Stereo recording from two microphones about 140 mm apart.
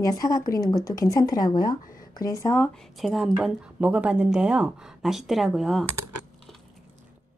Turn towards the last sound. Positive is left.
turn(degrees=0)  # may be behind; listen again after turning